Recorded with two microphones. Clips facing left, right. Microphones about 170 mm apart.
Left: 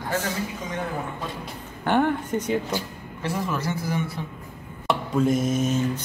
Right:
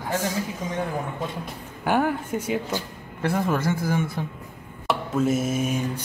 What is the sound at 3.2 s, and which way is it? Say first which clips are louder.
A man's voice: right 4 dB; 55° right (ahead or behind).